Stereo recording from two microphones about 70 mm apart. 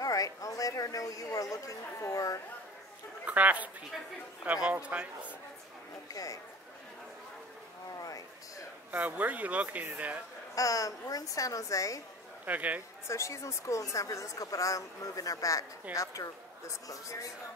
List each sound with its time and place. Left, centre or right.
0.0 s speech: left
3.3 s speech: right
6.1 s a woman's voice: left
8.0 s a sound: left
8.9 s speech: right
10.5 s a woman's voice: left
12.4 s speech: right
13.1 s a woman's voice: left